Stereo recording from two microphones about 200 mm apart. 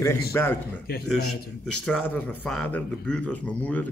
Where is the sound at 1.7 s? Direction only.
5° left (ahead or behind).